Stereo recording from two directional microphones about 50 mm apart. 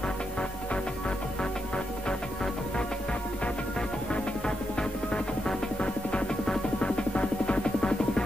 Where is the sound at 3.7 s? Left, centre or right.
Centre.